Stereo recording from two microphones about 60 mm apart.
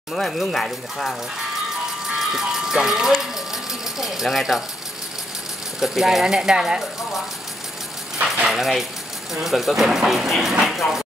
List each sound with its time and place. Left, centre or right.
0.1 s speech: centre
2.1 s ice cream truck: centre
5.8 s speech: centre
8.5 s speech: centre